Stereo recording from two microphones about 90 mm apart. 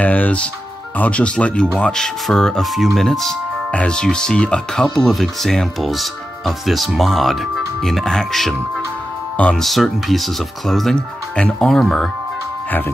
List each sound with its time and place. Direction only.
0.0 s speech: 15° left (ahead or behind)